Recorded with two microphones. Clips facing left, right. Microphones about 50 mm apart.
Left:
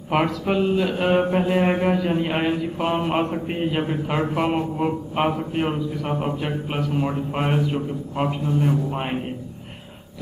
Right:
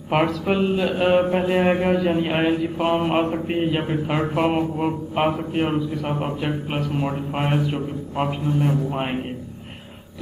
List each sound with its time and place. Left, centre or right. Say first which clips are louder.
0.1 s speech: right 1 dB; centre